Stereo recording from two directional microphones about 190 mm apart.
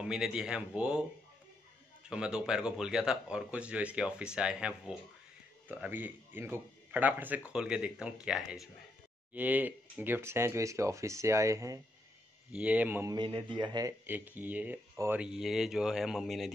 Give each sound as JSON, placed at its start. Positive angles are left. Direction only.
{"t": 0.0, "sound": "a man's voice", "side_deg": -5}
{"t": 2.0, "sound": "a man's voice", "side_deg": -5}
{"t": 13.1, "sound": "speech", "side_deg": -25}
{"t": 14.0, "sound": "a man's voice", "side_deg": -10}